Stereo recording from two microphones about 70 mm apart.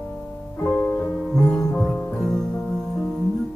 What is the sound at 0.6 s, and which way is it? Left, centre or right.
Music, left.